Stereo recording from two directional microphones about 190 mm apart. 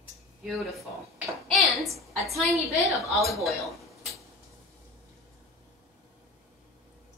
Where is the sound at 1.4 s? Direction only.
Centre (ahead or behind).